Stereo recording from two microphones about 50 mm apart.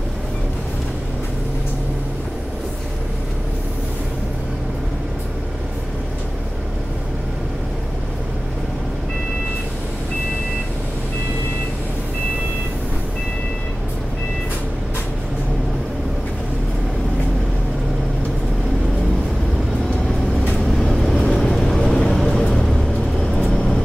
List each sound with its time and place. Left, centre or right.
20.5 s vehicle: centre